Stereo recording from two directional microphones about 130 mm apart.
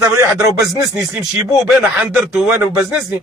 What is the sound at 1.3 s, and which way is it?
Speech, 10° right (ahead or behind).